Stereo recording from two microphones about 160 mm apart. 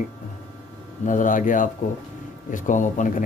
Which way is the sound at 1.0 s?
55° left (ahead or behind).